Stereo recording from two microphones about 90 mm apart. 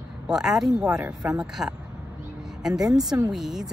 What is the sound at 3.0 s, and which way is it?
Speech, 5° right (ahead or behind).